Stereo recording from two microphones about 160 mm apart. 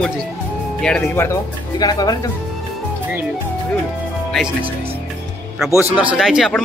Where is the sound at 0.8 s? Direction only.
10° left (ahead or behind).